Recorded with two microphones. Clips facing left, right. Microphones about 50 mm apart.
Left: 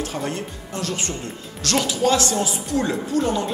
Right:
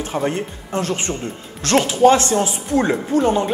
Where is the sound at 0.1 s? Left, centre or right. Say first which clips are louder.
Right 6 dB; right.